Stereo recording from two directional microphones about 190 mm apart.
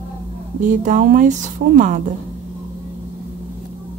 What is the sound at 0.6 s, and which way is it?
Speech, 40° right (ahead or behind).